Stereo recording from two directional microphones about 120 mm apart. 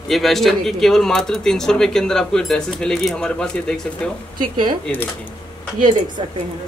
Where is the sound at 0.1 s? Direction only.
Centre (ahead or behind).